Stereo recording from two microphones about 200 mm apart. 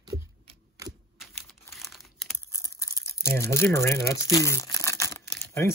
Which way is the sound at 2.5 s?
15° left (ahead or behind).